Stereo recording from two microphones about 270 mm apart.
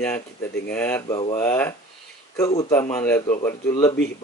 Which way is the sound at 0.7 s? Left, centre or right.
Centre.